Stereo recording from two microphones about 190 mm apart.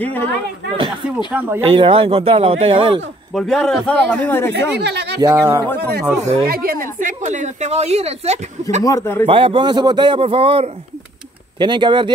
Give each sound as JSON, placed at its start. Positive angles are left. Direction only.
{"t": 0.0, "sound": "speech", "side_deg": 10}
{"t": 0.8, "sound": "a sound", "side_deg": -10}
{"t": 1.6, "sound": "a man's voice", "side_deg": -30}
{"t": 3.3, "sound": "speech", "side_deg": 5}
{"t": 4.6, "sound": "speech", "side_deg": -60}
{"t": 5.2, "sound": "speech", "side_deg": -15}
{"t": 6.4, "sound": "speech", "side_deg": -50}
{"t": 8.8, "sound": "speech", "side_deg": 15}
{"t": 9.2, "sound": "a man's voice", "side_deg": -30}